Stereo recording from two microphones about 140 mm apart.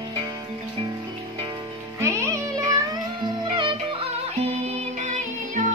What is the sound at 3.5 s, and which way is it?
Music, 35° right (ahead or behind).